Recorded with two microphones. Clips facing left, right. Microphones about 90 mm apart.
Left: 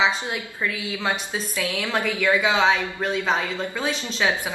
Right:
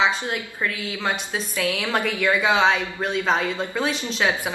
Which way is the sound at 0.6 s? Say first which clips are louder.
Even; centre (ahead or behind).